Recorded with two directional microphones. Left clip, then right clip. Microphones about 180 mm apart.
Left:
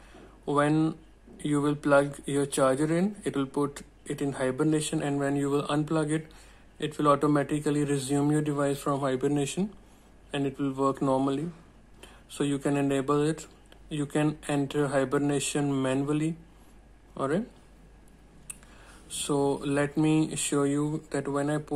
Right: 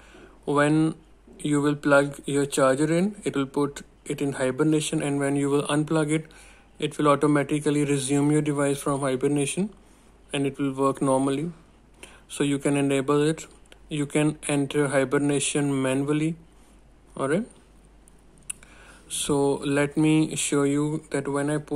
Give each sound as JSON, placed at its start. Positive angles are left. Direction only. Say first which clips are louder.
{"t": 0.5, "sound": "a sound", "louder": "right 4 dB", "side_deg": -25}
{"t": 1.5, "sound": "speech", "louder": "right 3 dB", "side_deg": -20}
{"t": 19.0, "sound": "speech", "louder": "right 4 dB", "side_deg": -25}